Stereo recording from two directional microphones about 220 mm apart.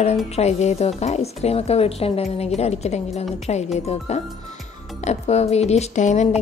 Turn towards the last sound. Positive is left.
turn(degrees=30)  # may be behind; listen again after turning